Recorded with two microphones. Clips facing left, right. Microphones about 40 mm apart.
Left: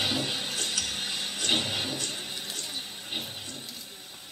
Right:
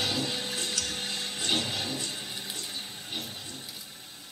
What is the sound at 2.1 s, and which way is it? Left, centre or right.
Water, left.